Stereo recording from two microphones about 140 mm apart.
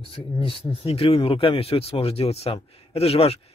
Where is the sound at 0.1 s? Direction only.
40° left (ahead or behind).